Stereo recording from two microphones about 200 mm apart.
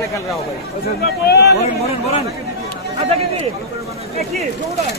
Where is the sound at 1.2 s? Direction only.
55° left (ahead or behind).